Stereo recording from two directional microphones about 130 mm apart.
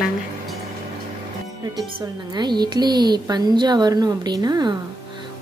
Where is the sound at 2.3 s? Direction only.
35° right (ahead or behind).